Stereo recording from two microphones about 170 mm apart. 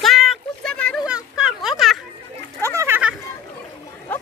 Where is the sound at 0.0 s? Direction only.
Centre (ahead or behind).